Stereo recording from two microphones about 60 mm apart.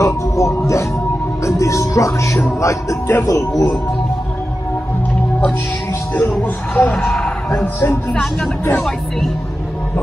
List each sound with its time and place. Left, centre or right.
0.0 s music: left
2.6 s speech: left
3.3 s a man's voice: left
6.7 s speech: centre
7.0 s music: centre
7.6 s speech: left
8.1 s speech: centre
8.7 s music: centre